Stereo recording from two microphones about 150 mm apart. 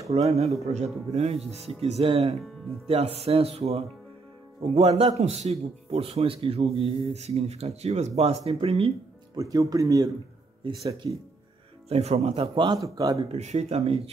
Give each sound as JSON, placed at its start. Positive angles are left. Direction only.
{"t": 0.1, "sound": "a man's voice", "side_deg": -45}
{"t": 9.4, "sound": "speech", "side_deg": -25}
{"t": 10.6, "sound": "a man's voice", "side_deg": -40}
{"t": 12.6, "sound": "speech", "side_deg": -25}
{"t": 13.3, "sound": "a man's voice", "side_deg": -45}